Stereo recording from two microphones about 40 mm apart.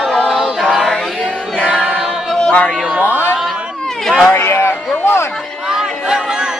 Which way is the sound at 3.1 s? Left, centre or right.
Left.